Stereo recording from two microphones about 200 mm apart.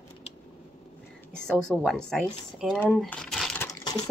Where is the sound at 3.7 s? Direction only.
15° left (ahead or behind).